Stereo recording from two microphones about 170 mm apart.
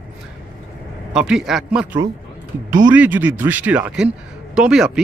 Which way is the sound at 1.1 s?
5° right (ahead or behind).